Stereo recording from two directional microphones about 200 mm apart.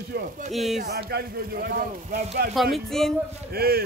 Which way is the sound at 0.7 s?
50° right (ahead or behind).